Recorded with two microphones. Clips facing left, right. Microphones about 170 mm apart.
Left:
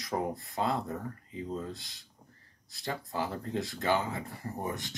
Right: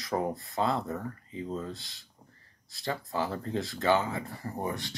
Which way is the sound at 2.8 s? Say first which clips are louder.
Right 3 dB; 15° left (ahead or behind).